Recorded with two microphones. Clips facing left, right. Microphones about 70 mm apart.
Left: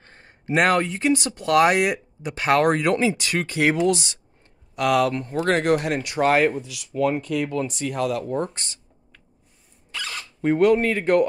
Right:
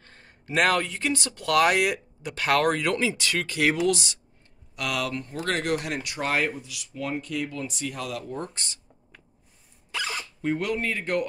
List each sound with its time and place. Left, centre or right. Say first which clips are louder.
0.0 s speech: left 7 dB; left
6.1 s speech: left 8 dB; left
6.9 s speech: left 10 dB; left
7.3 s speech: left 6 dB; left
9.9 s zipper: right 1 dB; centre
10.4 s speech: left 10 dB; left